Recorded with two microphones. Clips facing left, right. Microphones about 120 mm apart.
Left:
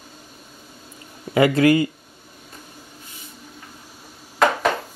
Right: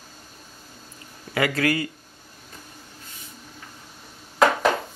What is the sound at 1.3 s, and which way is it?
Speech, 25° left (ahead or behind).